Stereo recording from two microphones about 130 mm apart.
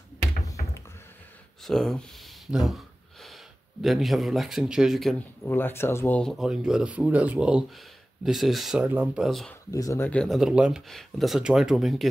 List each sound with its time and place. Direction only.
1.6 s gasp: 5° left (ahead or behind)
3.8 s speech: centre (ahead or behind)
5.4 s speech: 15° left (ahead or behind)
6.2 s speech: centre (ahead or behind)
9.7 s speech: 25° left (ahead or behind)
10.0 s speech: 5° left (ahead or behind)